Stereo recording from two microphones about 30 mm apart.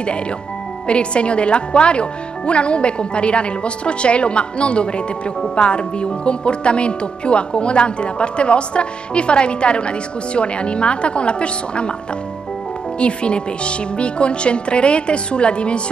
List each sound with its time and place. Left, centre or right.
0.8 s speech: left
13.0 s speech: left